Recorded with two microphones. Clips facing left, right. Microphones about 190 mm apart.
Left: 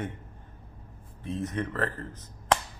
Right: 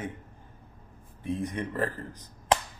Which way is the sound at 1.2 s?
15° right (ahead or behind).